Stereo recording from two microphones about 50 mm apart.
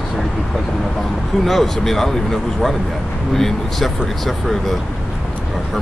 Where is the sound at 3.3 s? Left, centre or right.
Centre.